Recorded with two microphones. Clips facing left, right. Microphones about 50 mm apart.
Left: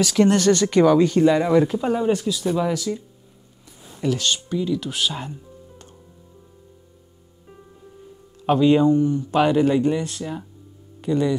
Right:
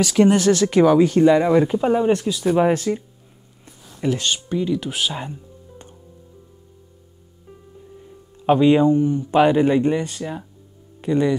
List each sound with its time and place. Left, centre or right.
0.0 s speech: centre
2.5 s speech: right
4.0 s speech: right
8.5 s speech: right
10.0 s speech: centre
11.0 s speech: right